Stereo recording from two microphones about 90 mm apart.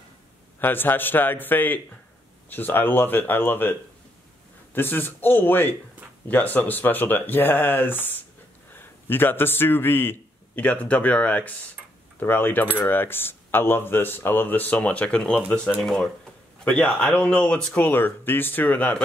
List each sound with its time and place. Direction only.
0.6 s speech: 25° left (ahead or behind)
4.7 s a man's voice: 25° left (ahead or behind)